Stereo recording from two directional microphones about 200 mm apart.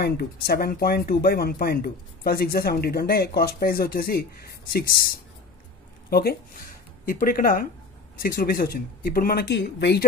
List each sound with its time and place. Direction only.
0.0 s speech: 50° left (ahead or behind)
6.0 s speech: 50° left (ahead or behind)